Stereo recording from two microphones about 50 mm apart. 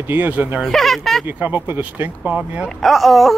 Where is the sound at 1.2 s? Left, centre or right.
Right.